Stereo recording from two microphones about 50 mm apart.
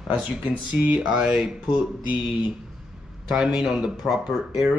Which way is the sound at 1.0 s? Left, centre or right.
Centre.